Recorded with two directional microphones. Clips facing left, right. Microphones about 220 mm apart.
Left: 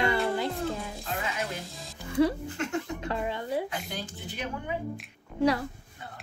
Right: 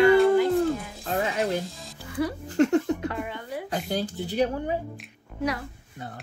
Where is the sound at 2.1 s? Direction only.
25° left (ahead or behind).